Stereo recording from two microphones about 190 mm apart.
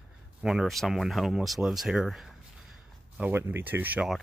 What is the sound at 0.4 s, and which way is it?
Speech, 5° right (ahead or behind).